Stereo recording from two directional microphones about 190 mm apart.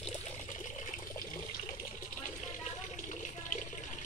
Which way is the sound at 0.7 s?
40° left (ahead or behind).